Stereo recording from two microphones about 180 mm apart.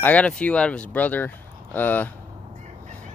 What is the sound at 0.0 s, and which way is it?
Speech, 5° left (ahead or behind).